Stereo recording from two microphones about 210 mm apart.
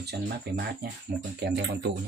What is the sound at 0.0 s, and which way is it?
Speech, 50° right (ahead or behind).